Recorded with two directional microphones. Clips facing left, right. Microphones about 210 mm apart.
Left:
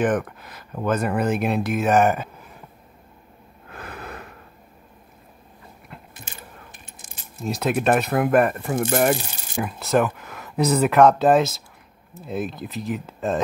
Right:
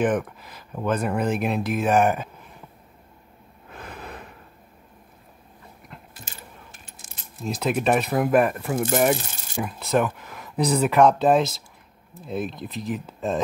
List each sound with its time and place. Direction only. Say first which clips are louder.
0.0 s coin: left 1 dB; centre (ahead or behind)
3.7 s sniff: left 2 dB; 5° left (ahead or behind)
6.2 s coin: left 2 dB; 20° left (ahead or behind)
7.4 s coin: left 2 dB; 5° left (ahead or behind)